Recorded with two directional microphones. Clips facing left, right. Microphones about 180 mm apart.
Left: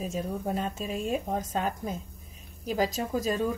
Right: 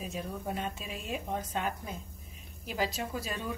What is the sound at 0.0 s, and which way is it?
Speech, 40° left (ahead or behind).